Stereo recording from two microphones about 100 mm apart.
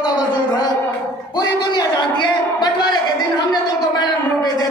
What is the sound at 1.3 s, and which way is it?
A man's voice, 40° left (ahead or behind).